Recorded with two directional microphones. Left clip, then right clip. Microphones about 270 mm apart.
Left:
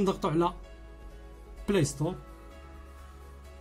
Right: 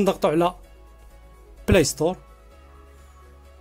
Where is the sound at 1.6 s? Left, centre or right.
Right.